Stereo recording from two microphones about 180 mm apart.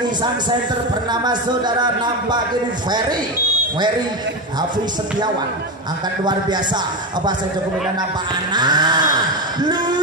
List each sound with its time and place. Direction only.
1.1 s speech: 25° right (ahead or behind)
8.5 s speech: 25° right (ahead or behind)
9.6 s a sound: 25° right (ahead or behind)